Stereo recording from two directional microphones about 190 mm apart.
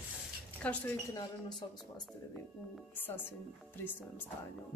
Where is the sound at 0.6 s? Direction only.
5° left (ahead or behind).